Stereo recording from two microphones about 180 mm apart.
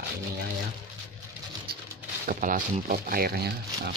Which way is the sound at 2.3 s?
45° right (ahead or behind).